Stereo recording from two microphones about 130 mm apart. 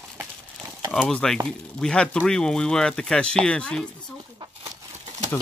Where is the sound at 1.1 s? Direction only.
5° left (ahead or behind).